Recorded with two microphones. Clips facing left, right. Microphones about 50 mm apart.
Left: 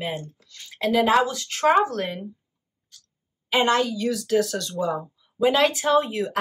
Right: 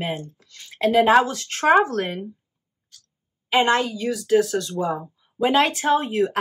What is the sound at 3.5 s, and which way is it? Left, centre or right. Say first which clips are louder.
Speech: right 1 dB; right.